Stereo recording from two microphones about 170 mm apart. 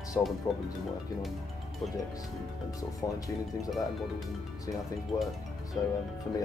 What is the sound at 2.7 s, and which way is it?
Speech, 20° left (ahead or behind).